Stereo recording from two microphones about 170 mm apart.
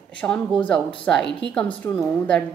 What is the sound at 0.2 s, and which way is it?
A woman's voice, 5° left (ahead or behind).